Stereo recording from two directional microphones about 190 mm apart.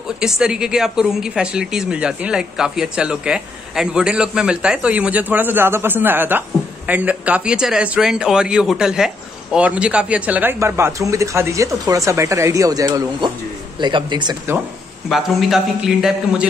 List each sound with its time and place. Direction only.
0.2 s a man's voice: 5° right (ahead or behind); by 14.3 s 25° right (ahead or behind)
15.0 s speech: centre (ahead or behind)